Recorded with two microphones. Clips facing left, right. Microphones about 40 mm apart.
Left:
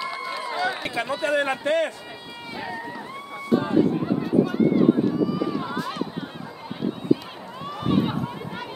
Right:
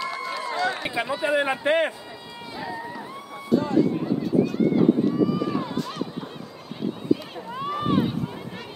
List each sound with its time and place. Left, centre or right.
0.0 s run: centre
0.8 s a man's voice: centre
1.7 s speech: right
2.5 s run: centre
3.5 s run: left
4.6 s run: centre
7.5 s run: centre